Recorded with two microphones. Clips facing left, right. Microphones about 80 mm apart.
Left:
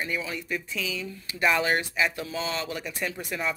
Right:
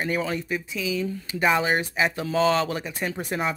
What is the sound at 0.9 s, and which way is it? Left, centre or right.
Speech, right.